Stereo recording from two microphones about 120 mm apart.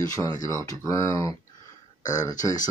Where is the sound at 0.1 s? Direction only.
30° left (ahead or behind).